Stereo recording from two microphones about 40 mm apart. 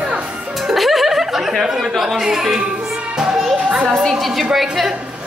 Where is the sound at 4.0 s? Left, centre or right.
Centre.